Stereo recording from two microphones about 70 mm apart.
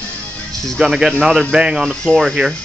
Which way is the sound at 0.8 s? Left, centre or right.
Centre.